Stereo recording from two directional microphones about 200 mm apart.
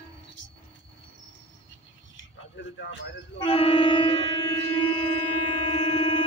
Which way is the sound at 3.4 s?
25° left (ahead or behind).